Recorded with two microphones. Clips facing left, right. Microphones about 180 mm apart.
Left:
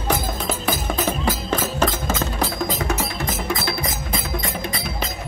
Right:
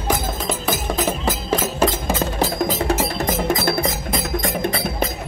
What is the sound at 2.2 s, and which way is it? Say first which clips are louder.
Music: right 3 dB; 35° right (ahead or behind).